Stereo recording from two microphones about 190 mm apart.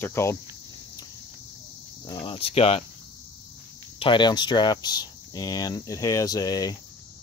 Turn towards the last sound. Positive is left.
turn(degrees=20)  # may be behind; listen again after turning